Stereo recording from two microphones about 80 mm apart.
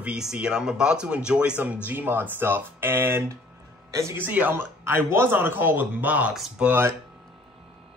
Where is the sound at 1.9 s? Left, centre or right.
Right.